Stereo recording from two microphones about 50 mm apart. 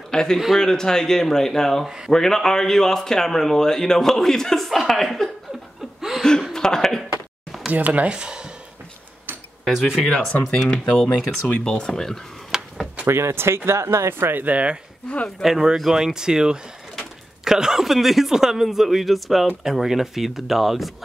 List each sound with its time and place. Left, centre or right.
0.1 s a man's voice: centre
1.9 s speech: centre
2.1 s speech: centre
5.9 s chuckle: centre
6.5 s cough: centre
7.7 s speech: right
9.7 s speech: centre
10.0 s speech: centre
12.5 s a sound: centre
13.0 s speech: right
14.3 s speech: right
15.4 s speech: centre